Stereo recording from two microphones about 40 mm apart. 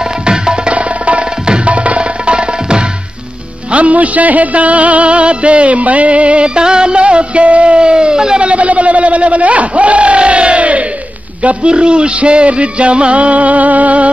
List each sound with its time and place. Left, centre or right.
0.2 s tabla: right
0.7 s tabla: right
1.7 s music: right
3.7 s music: right; by 8.5 s centre
8.5 s a sound: right
11.4 s music: right